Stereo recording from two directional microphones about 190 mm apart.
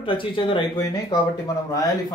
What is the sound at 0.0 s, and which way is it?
Speech, 25° left (ahead or behind).